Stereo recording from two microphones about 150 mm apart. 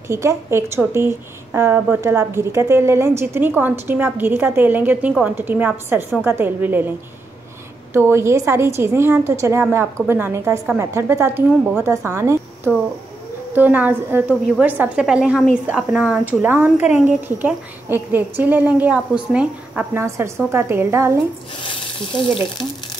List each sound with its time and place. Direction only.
0.1 s a woman's voice: 20° right (ahead or behind)
7.9 s a woman's voice: 15° right (ahead or behind)